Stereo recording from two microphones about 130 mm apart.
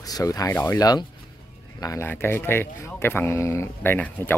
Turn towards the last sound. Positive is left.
turn(degrees=15)  # may be behind; listen again after turning